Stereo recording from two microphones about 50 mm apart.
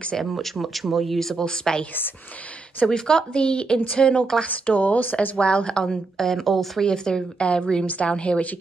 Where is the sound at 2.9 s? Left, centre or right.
Centre; by 5.5 s left.